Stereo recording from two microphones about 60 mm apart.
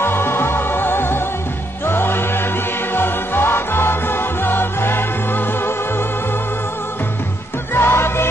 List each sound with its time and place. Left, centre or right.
0.0 s music: left
7.7 s music: left